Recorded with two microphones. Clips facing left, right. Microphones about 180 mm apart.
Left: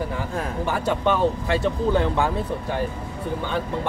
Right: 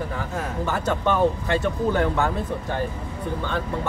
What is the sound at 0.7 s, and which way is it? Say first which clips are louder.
Speech: left 1 dB; 10° left (ahead or behind).